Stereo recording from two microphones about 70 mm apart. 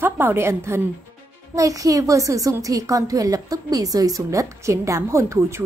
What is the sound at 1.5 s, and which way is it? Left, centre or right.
A woman's voice, right.